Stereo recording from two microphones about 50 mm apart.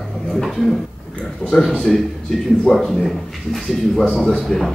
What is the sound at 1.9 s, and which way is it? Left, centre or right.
Speech, centre.